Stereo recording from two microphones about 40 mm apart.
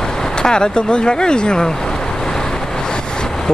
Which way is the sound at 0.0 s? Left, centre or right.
Centre.